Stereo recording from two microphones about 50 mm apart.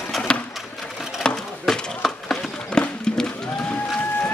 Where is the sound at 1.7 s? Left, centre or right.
Centre.